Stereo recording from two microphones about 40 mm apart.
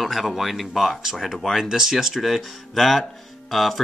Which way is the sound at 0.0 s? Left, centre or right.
Centre.